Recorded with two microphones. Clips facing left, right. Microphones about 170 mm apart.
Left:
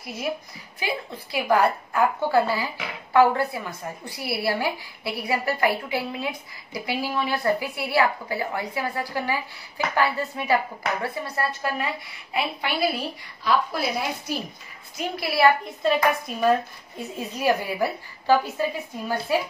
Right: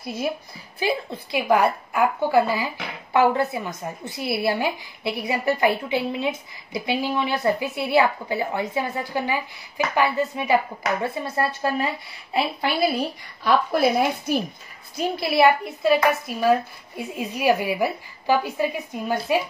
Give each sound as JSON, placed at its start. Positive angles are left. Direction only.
{"t": 0.0, "sound": "a woman's voice", "side_deg": -30}
{"t": 13.4, "sound": "a woman's voice", "side_deg": -55}
{"t": 15.0, "sound": "a woman's voice", "side_deg": -25}
{"t": 15.8, "sound": "speech", "side_deg": -5}